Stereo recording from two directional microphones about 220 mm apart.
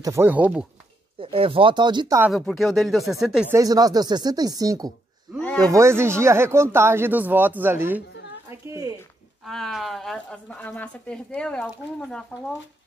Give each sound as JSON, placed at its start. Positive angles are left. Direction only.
{"t": 0.0, "sound": "speech", "side_deg": -10}
{"t": 1.2, "sound": "speech", "side_deg": -25}
{"t": 2.3, "sound": "speech", "side_deg": 0}
{"t": 3.5, "sound": "speech", "side_deg": -15}
{"t": 8.5, "sound": "a sound", "side_deg": -15}
{"t": 9.4, "sound": "speech", "side_deg": 0}